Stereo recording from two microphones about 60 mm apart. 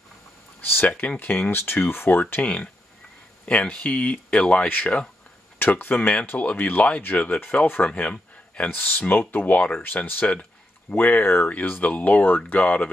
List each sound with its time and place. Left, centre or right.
0.6 s speech: left
1.3 s speech: left
2.4 s speech: left
8.6 s speech: left